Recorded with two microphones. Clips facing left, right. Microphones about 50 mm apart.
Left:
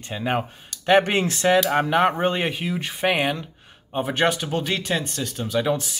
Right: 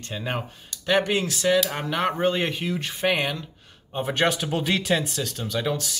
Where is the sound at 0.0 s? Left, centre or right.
Centre.